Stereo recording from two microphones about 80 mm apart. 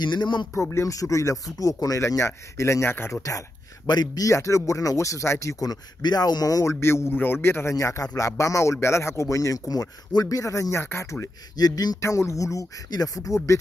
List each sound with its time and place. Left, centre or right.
0.0 s speech: left
0.6 s speech: left
3.2 s speech: left
3.8 s speech: left
6.6 s speech: left
7.7 s speech: left
11.5 s speech: left
12.0 s speech: left